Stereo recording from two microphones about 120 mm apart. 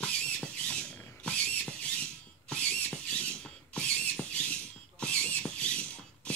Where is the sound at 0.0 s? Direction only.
10° left (ahead or behind).